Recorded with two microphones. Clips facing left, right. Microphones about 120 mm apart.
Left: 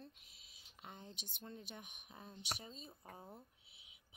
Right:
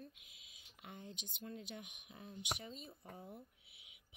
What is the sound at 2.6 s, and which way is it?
Speech, 25° left (ahead or behind).